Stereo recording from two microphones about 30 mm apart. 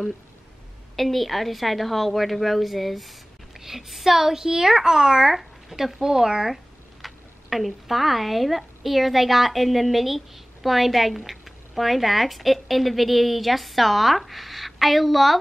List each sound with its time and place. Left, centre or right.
0.9 s a woman's voice: centre; by 5.3 s right
5.3 s a woman's voice: centre
6.4 s speech: centre